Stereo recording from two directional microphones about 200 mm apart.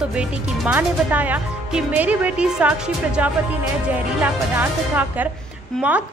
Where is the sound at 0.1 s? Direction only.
5° right (ahead or behind).